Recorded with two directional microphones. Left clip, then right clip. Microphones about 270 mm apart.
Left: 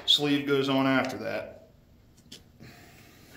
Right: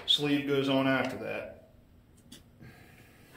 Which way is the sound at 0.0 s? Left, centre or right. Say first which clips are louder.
Left 3 dB; left.